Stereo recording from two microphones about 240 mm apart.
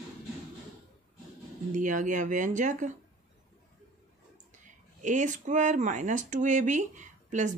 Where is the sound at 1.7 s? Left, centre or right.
Right.